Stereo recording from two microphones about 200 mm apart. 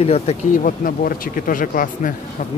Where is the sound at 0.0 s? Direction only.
30° left (ahead or behind).